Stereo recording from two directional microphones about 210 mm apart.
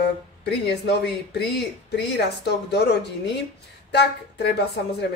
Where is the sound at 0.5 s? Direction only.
50° left (ahead or behind).